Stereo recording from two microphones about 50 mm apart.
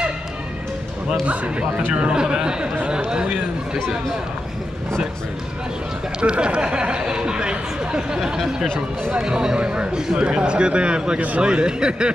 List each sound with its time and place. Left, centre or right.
1.2 s speech: right
6.2 s speech: centre